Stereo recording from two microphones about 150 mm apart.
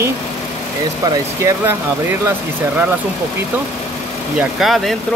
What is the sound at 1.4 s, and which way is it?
Speech, 15° right (ahead or behind).